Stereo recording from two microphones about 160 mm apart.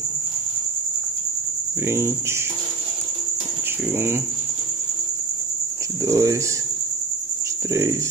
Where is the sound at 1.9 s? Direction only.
15° right (ahead or behind).